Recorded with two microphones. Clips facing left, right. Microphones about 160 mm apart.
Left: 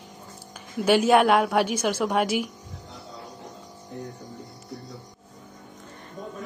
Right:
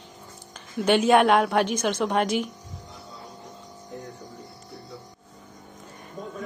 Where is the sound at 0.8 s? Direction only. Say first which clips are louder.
Even; 5° left (ahead or behind).